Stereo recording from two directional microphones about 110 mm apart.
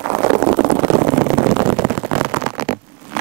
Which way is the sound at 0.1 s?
20° right (ahead or behind).